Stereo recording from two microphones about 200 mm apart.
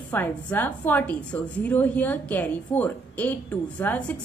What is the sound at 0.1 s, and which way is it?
A woman's voice, 10° left (ahead or behind).